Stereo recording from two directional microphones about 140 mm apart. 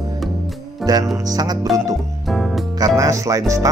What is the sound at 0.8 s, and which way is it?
Speech, 25° right (ahead or behind).